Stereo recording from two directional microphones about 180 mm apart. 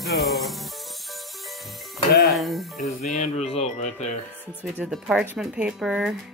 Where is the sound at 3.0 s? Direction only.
40° left (ahead or behind).